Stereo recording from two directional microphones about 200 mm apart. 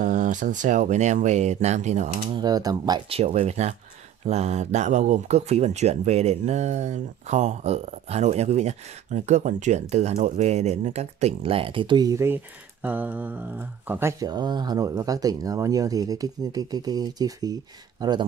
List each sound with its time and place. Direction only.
0.0 s speech: 40° right (ahead or behind)
2.2 s speech: 20° right (ahead or behind)